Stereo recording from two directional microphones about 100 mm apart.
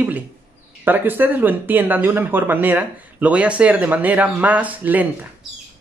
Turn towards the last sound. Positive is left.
turn(degrees=-15)  # may be behind; listen again after turning